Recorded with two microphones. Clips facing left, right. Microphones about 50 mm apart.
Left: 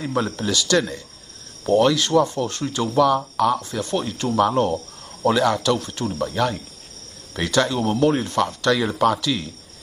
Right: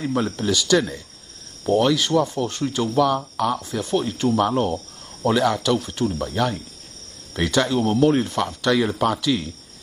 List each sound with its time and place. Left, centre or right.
0.0 s speech: centre